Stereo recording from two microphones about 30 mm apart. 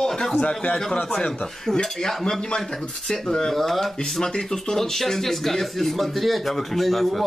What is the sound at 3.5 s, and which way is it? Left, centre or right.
Speech, centre.